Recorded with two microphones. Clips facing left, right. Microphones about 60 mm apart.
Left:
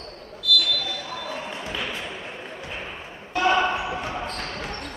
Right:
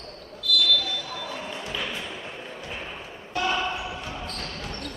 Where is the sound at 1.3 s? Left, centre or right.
Centre.